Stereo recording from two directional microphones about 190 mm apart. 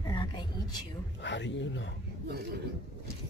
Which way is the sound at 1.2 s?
70° left (ahead or behind).